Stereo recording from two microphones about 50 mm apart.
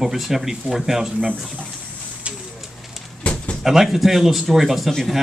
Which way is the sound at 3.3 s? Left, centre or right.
Left.